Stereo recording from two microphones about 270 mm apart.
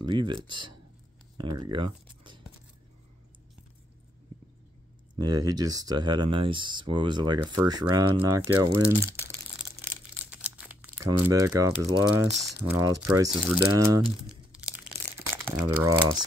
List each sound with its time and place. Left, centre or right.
0.0 s speech: centre
5.1 s speech: centre
8.4 s speech: right
10.3 s crumpling: centre
11.9 s speech: centre
14.3 s crumpling: centre